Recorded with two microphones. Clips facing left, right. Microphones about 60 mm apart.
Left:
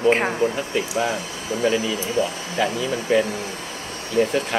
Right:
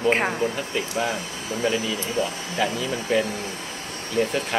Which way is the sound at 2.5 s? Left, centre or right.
Centre.